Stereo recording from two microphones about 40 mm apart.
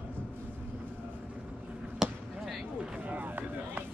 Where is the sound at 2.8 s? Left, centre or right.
Right.